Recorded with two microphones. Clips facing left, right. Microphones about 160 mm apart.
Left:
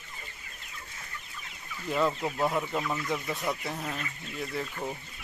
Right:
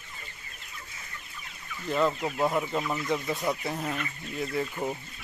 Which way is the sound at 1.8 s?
Centre (ahead or behind).